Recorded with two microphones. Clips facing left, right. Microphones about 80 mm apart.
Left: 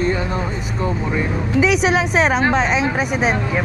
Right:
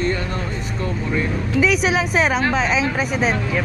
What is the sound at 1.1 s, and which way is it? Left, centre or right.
Speech, centre.